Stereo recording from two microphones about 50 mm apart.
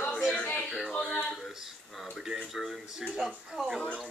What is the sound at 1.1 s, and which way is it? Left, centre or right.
Speech, centre.